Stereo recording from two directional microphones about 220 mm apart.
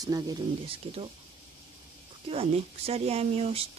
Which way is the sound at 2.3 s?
25° right (ahead or behind).